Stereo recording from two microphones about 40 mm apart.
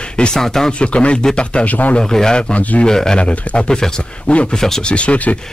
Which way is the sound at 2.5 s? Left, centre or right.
Left.